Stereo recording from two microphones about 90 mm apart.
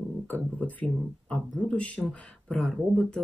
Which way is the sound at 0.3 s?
15° left (ahead or behind).